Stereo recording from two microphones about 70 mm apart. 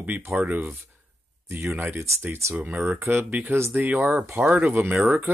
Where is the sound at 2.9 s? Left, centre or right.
Right.